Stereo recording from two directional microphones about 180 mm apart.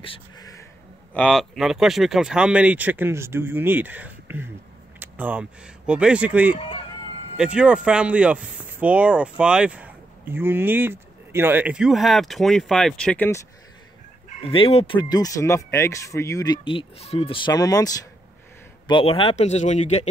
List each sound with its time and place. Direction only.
0.0 s a sound: 25° left (ahead or behind)
1.1 s speech: centre (ahead or behind)
6.5 s speech: 25° left (ahead or behind)
7.3 s speech: 5° right (ahead or behind)
14.4 s speech: 30° left (ahead or behind)
17.5 s speech: 20° left (ahead or behind); by 20.1 s 40° left (ahead or behind)